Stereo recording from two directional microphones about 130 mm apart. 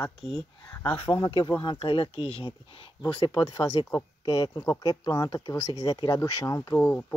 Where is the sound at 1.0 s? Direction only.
45° left (ahead or behind); by 6.7 s 30° left (ahead or behind).